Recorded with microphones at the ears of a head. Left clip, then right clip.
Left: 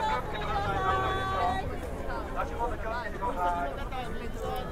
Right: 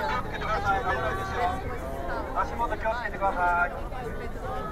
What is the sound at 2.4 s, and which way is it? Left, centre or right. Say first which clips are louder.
Vehicle: right 5 dB; right.